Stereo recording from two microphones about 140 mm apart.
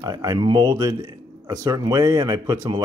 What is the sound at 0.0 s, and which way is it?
Speech, 25° right (ahead or behind).